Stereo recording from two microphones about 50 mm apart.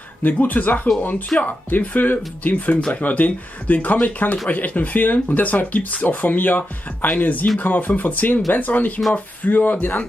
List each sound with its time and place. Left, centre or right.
0.2 s speech: left
1.3 s speech: left
1.8 s speech: left